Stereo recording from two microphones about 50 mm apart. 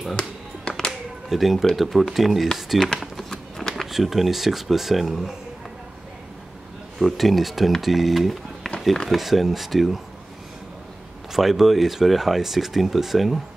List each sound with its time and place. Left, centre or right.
0.1 s a sound: centre
1.3 s speech: centre
3.0 s a sound: centre
3.7 s speech: centre
7.0 s speech: centre
11.3 s speech: centre